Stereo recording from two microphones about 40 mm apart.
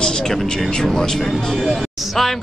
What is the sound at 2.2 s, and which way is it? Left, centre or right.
Speech, centre.